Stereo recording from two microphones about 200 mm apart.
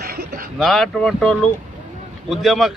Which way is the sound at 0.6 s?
Centre (ahead or behind).